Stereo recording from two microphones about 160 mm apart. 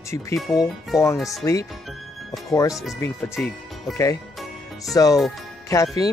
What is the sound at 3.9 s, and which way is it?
Speech, 20° left (ahead or behind).